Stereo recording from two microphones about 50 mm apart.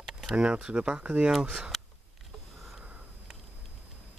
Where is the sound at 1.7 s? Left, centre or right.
Centre.